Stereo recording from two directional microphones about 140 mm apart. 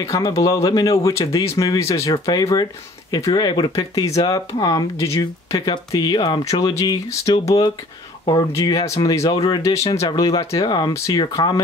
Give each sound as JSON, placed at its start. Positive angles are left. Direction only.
{"t": 0.0, "sound": "speech", "side_deg": 25}
{"t": 9.8, "sound": "speech", "side_deg": 40}
{"t": 10.1, "sound": "speech", "side_deg": 25}